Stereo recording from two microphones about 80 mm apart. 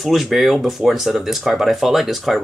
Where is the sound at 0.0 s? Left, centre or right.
Centre.